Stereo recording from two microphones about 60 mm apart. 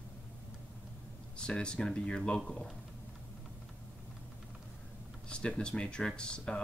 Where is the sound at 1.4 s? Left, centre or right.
Centre.